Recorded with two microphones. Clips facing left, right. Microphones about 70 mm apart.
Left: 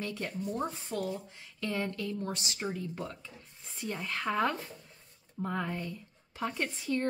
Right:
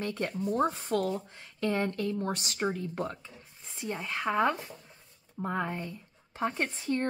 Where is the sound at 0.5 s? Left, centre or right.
Right.